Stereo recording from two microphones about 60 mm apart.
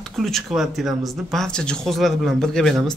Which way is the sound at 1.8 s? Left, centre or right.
Centre.